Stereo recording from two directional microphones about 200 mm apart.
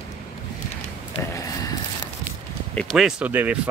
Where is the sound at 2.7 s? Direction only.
Centre (ahead or behind).